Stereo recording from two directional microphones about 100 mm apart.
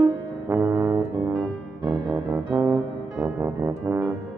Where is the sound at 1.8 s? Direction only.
45° right (ahead or behind).